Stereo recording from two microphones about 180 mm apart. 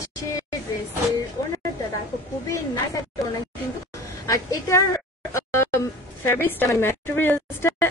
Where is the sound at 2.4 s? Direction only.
15° left (ahead or behind).